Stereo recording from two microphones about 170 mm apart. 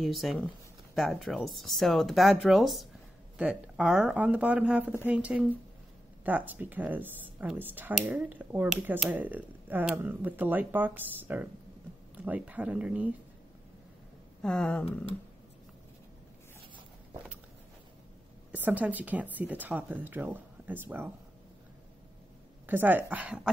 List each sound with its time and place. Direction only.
0.0 s speech: centre (ahead or behind)
14.4 s speech: 5° left (ahead or behind)
18.5 s speech: 10° right (ahead or behind)
22.7 s speech: 10° right (ahead or behind)